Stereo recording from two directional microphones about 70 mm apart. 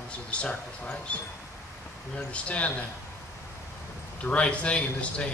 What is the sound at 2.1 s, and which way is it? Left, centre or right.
Speech, centre.